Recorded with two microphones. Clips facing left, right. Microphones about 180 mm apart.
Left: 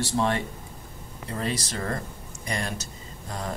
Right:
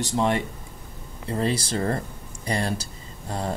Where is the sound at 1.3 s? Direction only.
30° right (ahead or behind).